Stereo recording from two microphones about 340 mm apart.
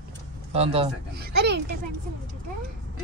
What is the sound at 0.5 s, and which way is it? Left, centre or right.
Speech, centre.